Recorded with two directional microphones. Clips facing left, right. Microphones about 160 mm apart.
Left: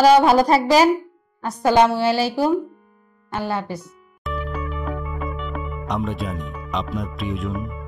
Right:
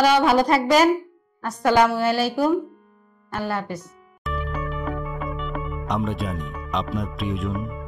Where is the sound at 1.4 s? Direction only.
25° left (ahead or behind).